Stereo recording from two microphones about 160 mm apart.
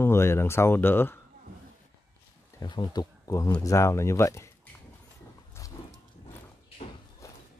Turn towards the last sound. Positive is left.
turn(degrees=40)  # may be behind; listen again after turning